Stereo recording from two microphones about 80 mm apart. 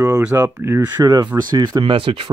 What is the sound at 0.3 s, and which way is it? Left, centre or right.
Speech, right.